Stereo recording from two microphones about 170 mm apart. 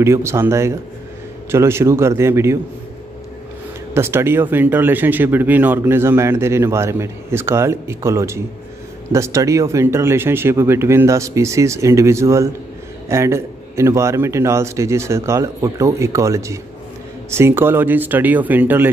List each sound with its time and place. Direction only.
0.0 s speech: 15° right (ahead or behind)
3.9 s speech: 15° right (ahead or behind)